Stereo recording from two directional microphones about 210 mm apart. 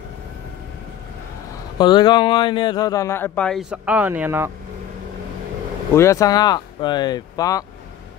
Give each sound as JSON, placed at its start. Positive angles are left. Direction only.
{"t": 1.8, "sound": "a man's voice", "side_deg": 20}
{"t": 3.7, "sound": "speech", "side_deg": -5}
{"t": 5.9, "sound": "a man's voice", "side_deg": 15}